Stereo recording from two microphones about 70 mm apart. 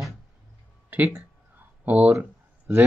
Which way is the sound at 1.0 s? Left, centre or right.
Right.